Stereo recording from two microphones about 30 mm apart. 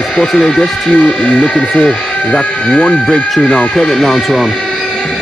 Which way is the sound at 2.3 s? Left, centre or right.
Left.